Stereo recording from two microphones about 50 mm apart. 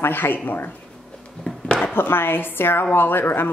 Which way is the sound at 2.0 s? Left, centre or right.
Left.